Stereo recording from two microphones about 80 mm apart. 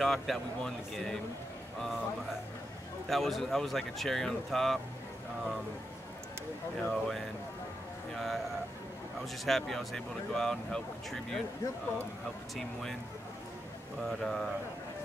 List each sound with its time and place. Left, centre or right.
0.0 s speech: centre
3.1 s speech: centre
6.8 s speech: centre
14.0 s speech: centre